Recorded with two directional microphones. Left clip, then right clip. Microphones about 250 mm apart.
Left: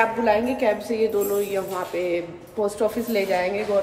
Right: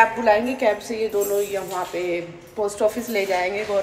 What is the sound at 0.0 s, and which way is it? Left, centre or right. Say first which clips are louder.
A woman's voice: right 3 dB; centre.